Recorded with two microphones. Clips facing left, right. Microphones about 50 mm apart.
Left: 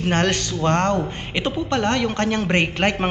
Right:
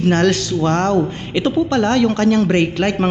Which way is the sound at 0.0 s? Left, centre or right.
Centre.